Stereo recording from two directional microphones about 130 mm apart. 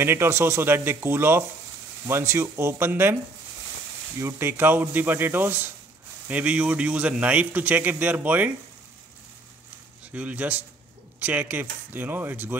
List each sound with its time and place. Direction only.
0.0 s a man's voice: 20° right (ahead or behind)
4.2 s a man's voice: 20° right (ahead or behind)
10.1 s a man's voice: 10° right (ahead or behind)